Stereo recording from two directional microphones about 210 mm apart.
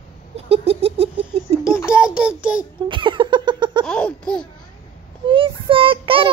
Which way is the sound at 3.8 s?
5° left (ahead or behind).